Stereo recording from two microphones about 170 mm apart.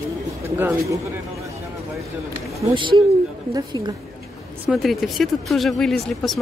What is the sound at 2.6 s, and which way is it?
Speech, 30° right (ahead or behind).